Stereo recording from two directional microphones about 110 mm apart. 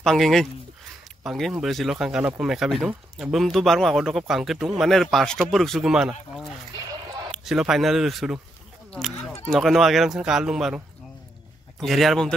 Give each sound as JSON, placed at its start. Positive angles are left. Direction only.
{"t": 0.0, "sound": "speech", "side_deg": 5}
{"t": 6.9, "sound": "a sound", "side_deg": -35}
{"t": 7.2, "sound": "speech", "side_deg": -5}
{"t": 9.5, "sound": "speech", "side_deg": 0}
{"t": 11.8, "sound": "speech", "side_deg": 0}